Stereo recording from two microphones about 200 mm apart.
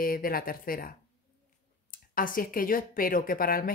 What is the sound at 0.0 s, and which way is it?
Speech, 45° left (ahead or behind).